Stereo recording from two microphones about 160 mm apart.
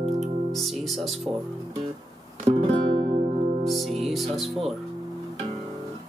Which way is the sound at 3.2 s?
40° right (ahead or behind).